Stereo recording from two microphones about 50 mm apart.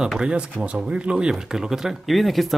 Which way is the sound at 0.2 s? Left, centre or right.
Centre.